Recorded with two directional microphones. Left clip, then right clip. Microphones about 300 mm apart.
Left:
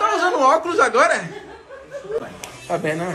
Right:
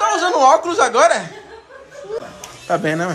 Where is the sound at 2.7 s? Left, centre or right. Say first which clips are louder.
Right 4 dB; centre.